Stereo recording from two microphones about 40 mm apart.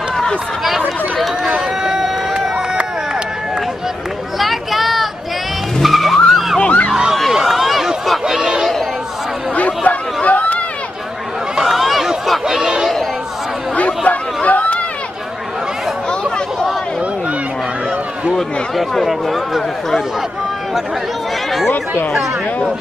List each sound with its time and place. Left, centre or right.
1.8 s run: centre
2.5 s run: right
4.4 s a sound: centre
5.8 s vehicle: centre
6.6 s a sound: left
7.3 s run: centre
8.1 s chatter: centre
9.6 s chatter: left
11.6 s a sound: centre
13.7 s chatter: left
19.0 s speech: centre
21.5 s speech: centre